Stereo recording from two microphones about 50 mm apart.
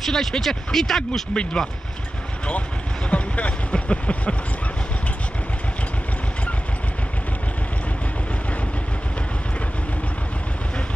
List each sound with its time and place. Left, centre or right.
0.0 s speech: centre
1.3 s speech: centre
3.1 s speech: left